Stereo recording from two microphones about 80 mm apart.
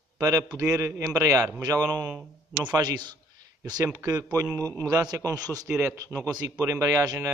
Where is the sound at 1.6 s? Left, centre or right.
Right.